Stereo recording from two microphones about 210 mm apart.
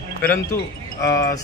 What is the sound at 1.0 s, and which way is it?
Speech, 15° left (ahead or behind).